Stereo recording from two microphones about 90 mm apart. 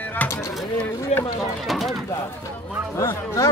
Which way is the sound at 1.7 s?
Centre (ahead or behind).